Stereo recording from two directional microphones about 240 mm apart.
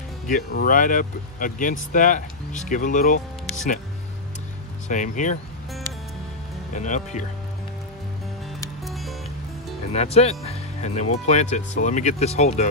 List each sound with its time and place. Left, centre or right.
0.3 s speech: left
4.8 s speech: left
6.7 s speech: left
8.8 s music: centre
9.9 s speech: left